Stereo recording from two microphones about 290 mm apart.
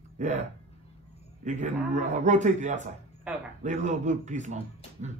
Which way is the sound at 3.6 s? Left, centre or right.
Right.